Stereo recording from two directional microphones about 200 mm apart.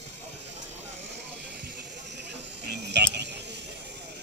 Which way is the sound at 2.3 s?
55° right (ahead or behind).